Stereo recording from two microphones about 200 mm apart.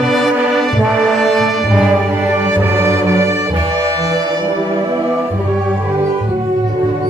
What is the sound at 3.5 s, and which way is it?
Brass instrument, 30° right (ahead or behind).